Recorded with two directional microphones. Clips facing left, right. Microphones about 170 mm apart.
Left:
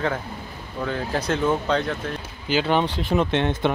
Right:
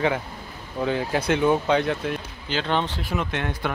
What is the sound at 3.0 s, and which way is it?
Speech, 30° left (ahead or behind).